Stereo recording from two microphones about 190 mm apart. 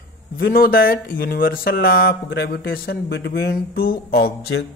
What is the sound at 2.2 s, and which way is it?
A man's voice, 55° left (ahead or behind).